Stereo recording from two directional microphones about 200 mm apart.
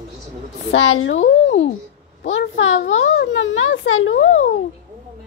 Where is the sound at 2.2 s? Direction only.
75° left (ahead or behind).